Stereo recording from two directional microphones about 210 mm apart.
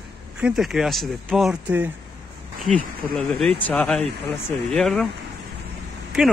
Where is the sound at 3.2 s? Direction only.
Centre (ahead or behind).